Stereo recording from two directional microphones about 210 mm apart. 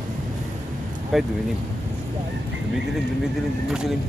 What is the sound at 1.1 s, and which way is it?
Speech, centre (ahead or behind).